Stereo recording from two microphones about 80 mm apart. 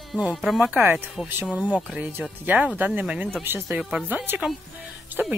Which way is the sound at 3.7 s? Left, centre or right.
Centre.